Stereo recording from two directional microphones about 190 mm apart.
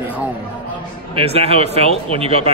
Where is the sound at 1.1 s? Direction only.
30° right (ahead or behind).